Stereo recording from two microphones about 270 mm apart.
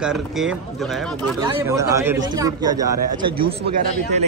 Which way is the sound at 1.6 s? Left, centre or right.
Centre.